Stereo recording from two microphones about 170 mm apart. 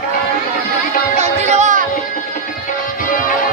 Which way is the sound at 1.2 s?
40° right (ahead or behind).